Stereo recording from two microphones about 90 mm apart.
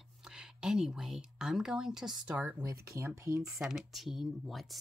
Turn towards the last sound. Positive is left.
turn(degrees=0)  # may be behind; listen again after turning